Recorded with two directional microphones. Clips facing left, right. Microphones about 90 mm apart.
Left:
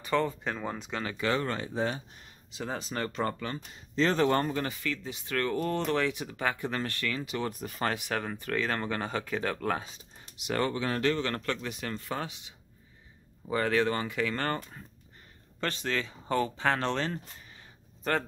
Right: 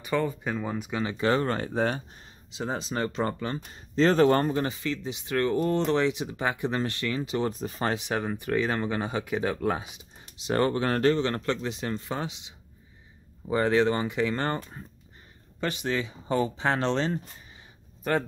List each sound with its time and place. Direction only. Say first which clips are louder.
0.0 s speech: right 1 dB; 10° right (ahead or behind)
1.0 s speech: right 5 dB; 30° right (ahead or behind)
1.7 s speech: right 4 dB; 55° right (ahead or behind)
2.0 s speech: right 3 dB; 30° right (ahead or behind)
3.7 s speech: right 5 dB; 40° right (ahead or behind); by 10.0 s 15° right (ahead or behind)
10.4 s speech: right 5 dB; 35° right (ahead or behind)
11.1 s speech: right 4 dB; 25° right (ahead or behind)